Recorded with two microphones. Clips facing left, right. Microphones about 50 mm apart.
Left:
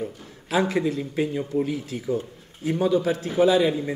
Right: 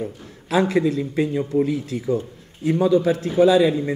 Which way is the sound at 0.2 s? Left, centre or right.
Right.